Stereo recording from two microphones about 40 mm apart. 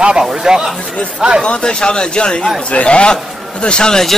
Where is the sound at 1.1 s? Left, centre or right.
Right.